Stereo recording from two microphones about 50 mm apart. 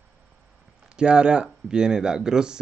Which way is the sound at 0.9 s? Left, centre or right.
Centre.